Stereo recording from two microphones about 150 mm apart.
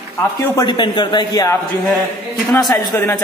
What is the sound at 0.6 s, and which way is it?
A man's voice, 30° left (ahead or behind).